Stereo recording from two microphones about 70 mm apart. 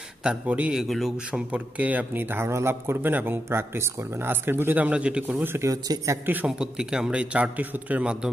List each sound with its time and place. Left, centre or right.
0.2 s a man's voice: centre
0.7 s speech: centre
1.5 s speech: right
5.2 s speech: right
5.7 s speech: right
6.4 s a man's voice: centre